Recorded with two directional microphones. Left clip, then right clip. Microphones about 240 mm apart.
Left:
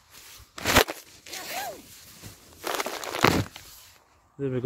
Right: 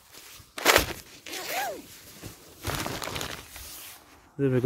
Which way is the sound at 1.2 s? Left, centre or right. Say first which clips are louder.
Right 3 dB; right.